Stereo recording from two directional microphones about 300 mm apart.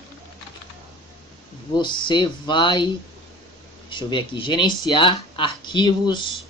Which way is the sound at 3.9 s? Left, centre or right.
Centre.